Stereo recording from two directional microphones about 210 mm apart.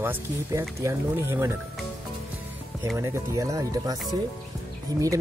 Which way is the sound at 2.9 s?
15° right (ahead or behind).